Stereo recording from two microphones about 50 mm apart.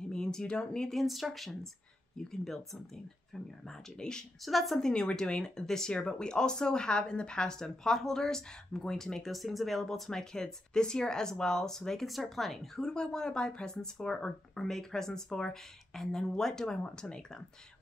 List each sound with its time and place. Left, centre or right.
0.0 s speech: centre
0.9 s speech: centre
4.5 s speech: centre
4.7 s speech: centre